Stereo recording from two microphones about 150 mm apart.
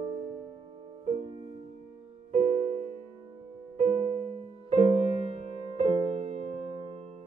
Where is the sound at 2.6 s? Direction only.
50° right (ahead or behind).